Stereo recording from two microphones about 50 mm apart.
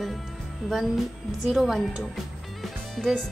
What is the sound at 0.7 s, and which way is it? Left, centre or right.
A woman's voice, centre.